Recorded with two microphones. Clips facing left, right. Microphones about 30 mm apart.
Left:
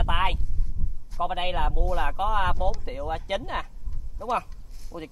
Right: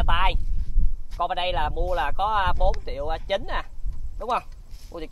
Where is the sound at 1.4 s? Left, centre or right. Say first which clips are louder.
Right 2 dB; right.